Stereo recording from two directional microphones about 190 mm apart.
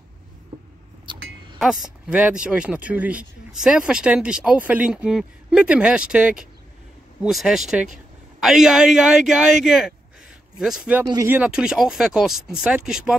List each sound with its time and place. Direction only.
1.1 s a sound: 25° right (ahead or behind)
1.6 s speech: centre (ahead or behind)
11.1 s speech: 20° right (ahead or behind)
11.3 s speech: 5° right (ahead or behind)